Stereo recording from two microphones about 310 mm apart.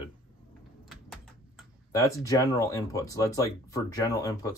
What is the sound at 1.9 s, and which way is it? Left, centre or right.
Speech, centre.